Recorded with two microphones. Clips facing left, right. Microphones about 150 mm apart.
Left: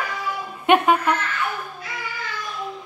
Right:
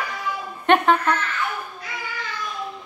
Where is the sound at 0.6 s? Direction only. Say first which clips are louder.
Left 1 dB; 10° left (ahead or behind).